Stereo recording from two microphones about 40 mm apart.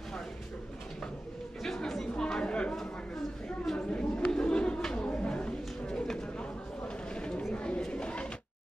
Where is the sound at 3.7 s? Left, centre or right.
Left.